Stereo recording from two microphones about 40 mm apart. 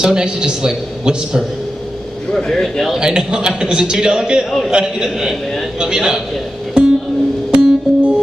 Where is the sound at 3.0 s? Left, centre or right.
Centre.